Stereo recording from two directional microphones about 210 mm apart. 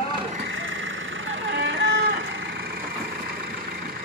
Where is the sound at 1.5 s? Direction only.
60° right (ahead or behind).